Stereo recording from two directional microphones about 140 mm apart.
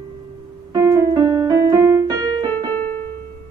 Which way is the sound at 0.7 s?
20° right (ahead or behind).